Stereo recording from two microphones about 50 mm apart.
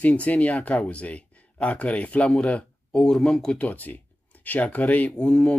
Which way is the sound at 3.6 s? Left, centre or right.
Left.